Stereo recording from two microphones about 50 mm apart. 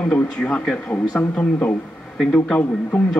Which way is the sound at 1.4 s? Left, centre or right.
Left.